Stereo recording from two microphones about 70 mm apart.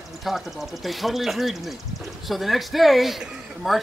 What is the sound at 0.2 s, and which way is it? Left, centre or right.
Speech, centre.